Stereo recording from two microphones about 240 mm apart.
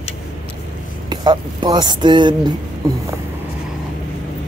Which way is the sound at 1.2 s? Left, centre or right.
Centre.